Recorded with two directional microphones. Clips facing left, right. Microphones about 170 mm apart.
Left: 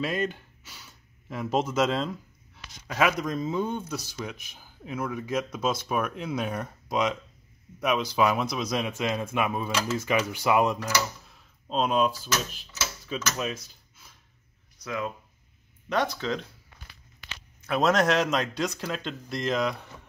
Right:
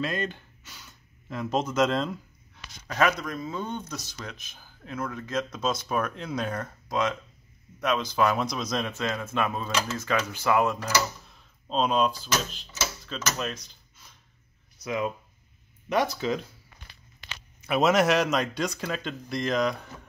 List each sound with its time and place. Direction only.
0.0 s speech: 5° left (ahead or behind)
3.3 s speech: 20° left (ahead or behind)
3.6 s speech: 5° left (ahead or behind)
11.2 s a sound: 5° left (ahead or behind)
12.5 s speech: 5° left (ahead or behind)
14.8 s speech: 15° right (ahead or behind)
17.6 s speech: 10° right (ahead or behind)